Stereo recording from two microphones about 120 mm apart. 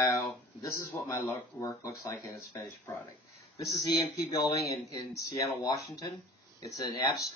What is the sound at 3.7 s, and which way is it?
Speech, 30° left (ahead or behind).